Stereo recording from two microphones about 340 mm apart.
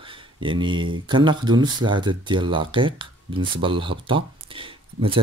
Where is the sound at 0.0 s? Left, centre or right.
Centre.